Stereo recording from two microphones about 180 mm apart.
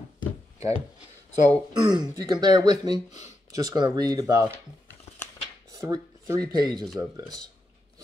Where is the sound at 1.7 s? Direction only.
20° right (ahead or behind).